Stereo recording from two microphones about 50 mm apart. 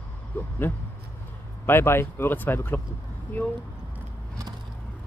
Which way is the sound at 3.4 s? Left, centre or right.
Left.